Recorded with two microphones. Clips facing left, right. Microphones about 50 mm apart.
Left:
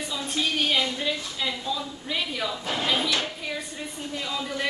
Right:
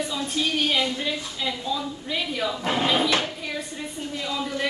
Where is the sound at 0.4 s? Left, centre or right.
Centre.